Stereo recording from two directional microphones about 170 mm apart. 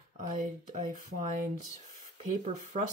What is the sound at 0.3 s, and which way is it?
Speech, 50° right (ahead or behind).